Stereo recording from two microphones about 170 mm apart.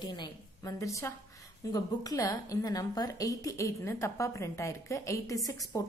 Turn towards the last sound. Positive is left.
turn(degrees=20)  # may be behind; listen again after turning